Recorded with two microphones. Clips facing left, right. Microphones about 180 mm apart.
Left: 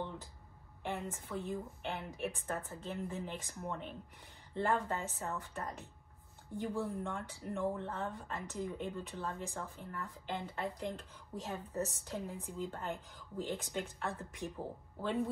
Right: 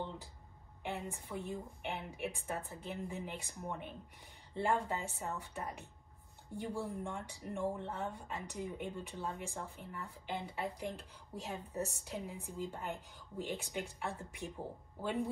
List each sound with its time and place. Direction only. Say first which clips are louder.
0.8 s speech: left 1 dB; 15° right (ahead or behind)